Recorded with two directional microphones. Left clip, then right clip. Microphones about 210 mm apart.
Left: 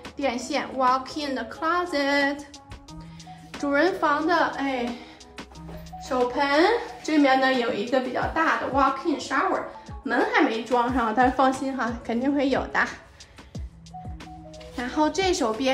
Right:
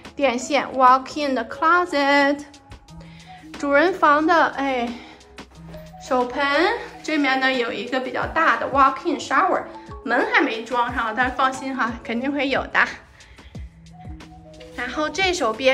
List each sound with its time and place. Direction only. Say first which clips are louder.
0.0 s a woman's voice: right 6 dB; 5° left (ahead or behind)
3.6 s a woman's voice: right 6 dB; 10° left (ahead or behind)
7.5 s a woman's voice: right 1 dB; centre (ahead or behind)
8.1 s a woman's voice: right 4 dB; 15° left (ahead or behind)
11.0 s a woman's voice: even; 25° left (ahead or behind)
11.7 s a woman's voice: right 3 dB; 15° left (ahead or behind)
14.8 s a woman's voice: right 1 dB; 15° left (ahead or behind)